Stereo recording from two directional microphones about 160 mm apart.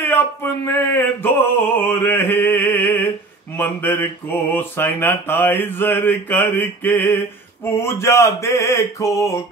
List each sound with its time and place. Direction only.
0.0 s mantra: 15° left (ahead or behind)